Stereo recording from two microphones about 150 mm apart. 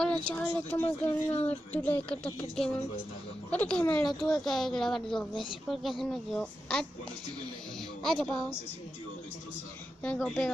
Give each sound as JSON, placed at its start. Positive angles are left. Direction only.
{"t": 0.0, "sound": "speech", "side_deg": 5}
{"t": 0.8, "sound": "speech", "side_deg": 40}
{"t": 1.5, "sound": "speech", "side_deg": 10}
{"t": 8.0, "sound": "a woman's voice", "side_deg": 5}
{"t": 10.1, "sound": "speech", "side_deg": 5}